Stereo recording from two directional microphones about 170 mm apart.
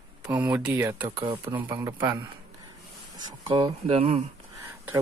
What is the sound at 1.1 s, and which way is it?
Speech, 30° right (ahead or behind).